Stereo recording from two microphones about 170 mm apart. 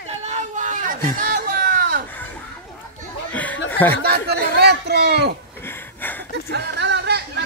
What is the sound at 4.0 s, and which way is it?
Speech, 65° right (ahead or behind).